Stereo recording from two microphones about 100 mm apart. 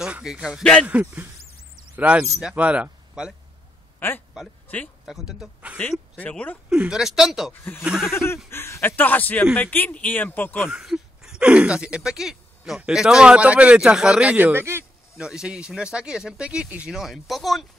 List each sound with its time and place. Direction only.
0.0 s a woman's voice: 5° right (ahead or behind)
4.4 s speech: 5° right (ahead or behind)
5.8 s speech: 15° left (ahead or behind)
6.7 s a woman's voice: 5° right (ahead or behind)
8.1 s a man's voice: 25° left (ahead or behind)
10.7 s speech: 5° right (ahead or behind); by 14.9 s 25° right (ahead or behind)
15.1 s speech: 10° right (ahead or behind)